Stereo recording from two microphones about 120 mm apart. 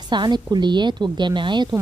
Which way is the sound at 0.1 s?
40° right (ahead or behind).